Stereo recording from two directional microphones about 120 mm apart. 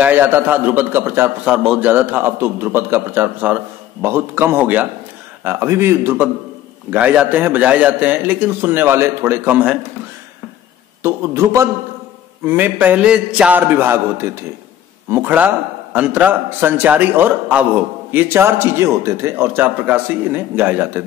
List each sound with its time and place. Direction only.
0.0 s a man's voice: 15° right (ahead or behind)
1.4 s a man's voice: 5° right (ahead or behind)
1.8 s a man's voice: 15° right (ahead or behind)
11.0 s a man's voice: 20° right (ahead or behind)